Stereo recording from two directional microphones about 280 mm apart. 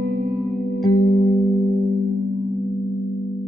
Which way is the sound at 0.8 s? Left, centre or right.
Left.